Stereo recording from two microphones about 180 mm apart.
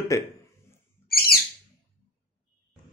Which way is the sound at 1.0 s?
60° left (ahead or behind).